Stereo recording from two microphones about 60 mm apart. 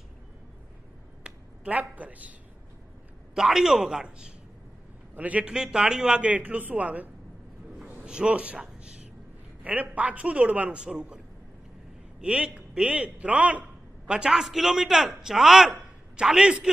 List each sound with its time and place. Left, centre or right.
1.2 s a sound: right
3.3 s a man's voice: centre
5.1 s a man's voice: right
5.5 s a man's voice: centre
9.6 s a man's voice: right
12.2 s a man's voice: centre